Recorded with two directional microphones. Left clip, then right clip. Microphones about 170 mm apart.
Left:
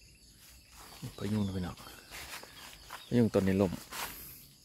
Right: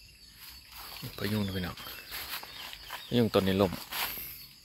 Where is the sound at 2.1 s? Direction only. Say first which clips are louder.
Right 5 dB; 80° right.